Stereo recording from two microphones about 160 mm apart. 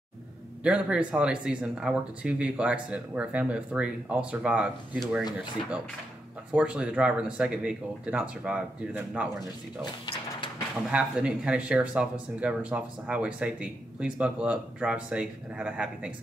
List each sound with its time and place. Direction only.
0.7 s speech: 5° right (ahead or behind)
6.5 s speech: 5° right (ahead or behind)
9.4 s speech: 25° left (ahead or behind)
10.9 s speech: 5° right (ahead or behind)